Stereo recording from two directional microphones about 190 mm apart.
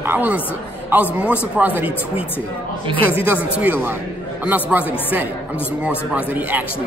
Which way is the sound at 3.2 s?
10° right (ahead or behind).